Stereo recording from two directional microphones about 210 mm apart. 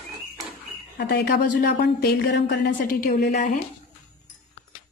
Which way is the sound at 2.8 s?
40° left (ahead or behind).